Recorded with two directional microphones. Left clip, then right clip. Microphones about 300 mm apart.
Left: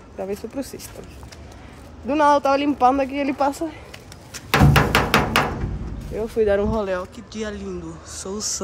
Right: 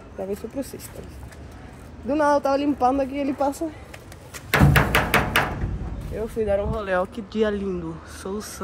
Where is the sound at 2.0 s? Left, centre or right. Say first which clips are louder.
Left 3 dB; centre.